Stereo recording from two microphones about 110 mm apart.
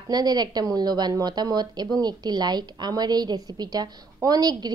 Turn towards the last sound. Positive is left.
turn(degrees=-35)  # may be behind; listen again after turning